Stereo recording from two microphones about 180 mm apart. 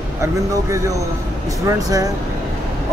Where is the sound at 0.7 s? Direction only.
20° right (ahead or behind).